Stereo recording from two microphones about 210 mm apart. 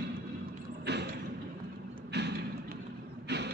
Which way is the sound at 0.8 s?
55° right (ahead or behind).